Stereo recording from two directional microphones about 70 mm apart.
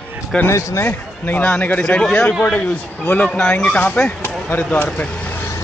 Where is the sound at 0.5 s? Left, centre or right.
Left.